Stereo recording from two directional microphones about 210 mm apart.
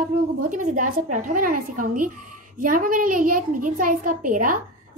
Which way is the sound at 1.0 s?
40° right (ahead or behind).